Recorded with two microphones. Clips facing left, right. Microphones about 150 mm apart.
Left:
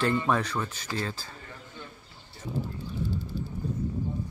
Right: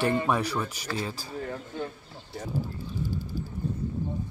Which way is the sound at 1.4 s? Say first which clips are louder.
Right 11 dB; 60° right (ahead or behind).